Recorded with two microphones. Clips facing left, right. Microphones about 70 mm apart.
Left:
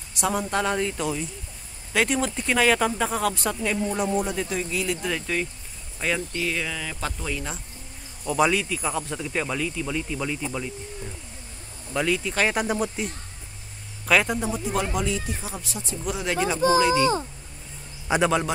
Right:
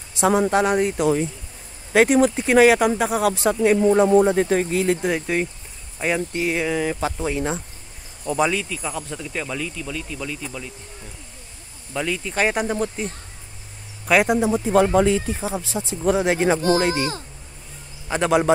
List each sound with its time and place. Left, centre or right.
0.2 s speech: right
4.2 s speech: right
4.7 s speech: right
8.3 s speech: centre
11.9 s speech: centre
12.6 s speech: centre
14.0 s speech: centre
14.7 s speech: right
15.4 s speech: right
18.1 s speech: centre